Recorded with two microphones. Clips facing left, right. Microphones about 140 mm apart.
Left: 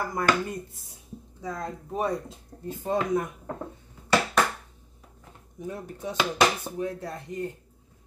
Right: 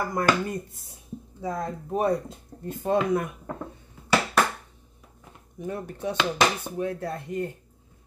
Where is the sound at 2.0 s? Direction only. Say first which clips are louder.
Right 4 dB; 55° right (ahead or behind).